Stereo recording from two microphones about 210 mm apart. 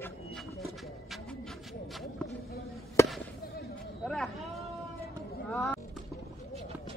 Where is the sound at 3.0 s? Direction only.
15° left (ahead or behind).